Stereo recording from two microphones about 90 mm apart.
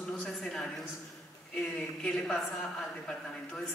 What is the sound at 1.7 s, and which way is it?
A man's voice, 10° left (ahead or behind).